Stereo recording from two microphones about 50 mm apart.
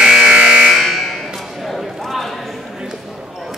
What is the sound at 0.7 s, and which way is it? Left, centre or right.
Buzzer, centre.